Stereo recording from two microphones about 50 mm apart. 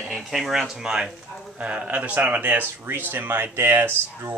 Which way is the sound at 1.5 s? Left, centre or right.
Right.